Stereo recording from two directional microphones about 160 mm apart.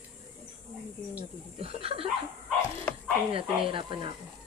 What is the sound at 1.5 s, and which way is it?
Snicker, 35° right (ahead or behind).